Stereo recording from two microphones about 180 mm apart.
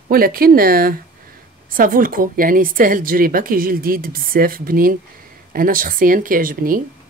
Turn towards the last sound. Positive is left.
turn(degrees=-50)  # may be behind; listen again after turning